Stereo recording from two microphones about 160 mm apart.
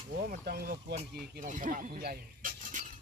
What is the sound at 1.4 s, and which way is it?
Speech, 55° right (ahead or behind).